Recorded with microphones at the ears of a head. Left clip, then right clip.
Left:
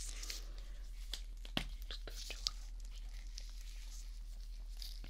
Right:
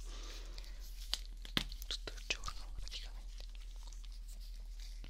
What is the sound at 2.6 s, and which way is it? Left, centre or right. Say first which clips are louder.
Whispering: right 12 dB; right.